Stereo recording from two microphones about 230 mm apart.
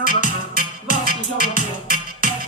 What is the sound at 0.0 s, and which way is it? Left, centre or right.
Music, left.